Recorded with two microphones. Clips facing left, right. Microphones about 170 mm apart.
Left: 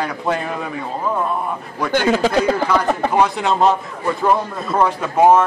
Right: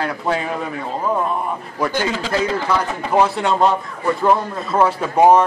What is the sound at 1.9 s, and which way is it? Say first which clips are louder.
Speech: left 8 dB; 50° left (ahead or behind).